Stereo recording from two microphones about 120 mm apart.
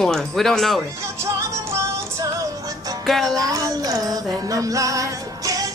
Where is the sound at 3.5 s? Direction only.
30° right (ahead or behind).